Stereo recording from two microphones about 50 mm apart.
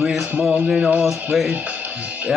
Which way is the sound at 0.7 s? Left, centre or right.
Right.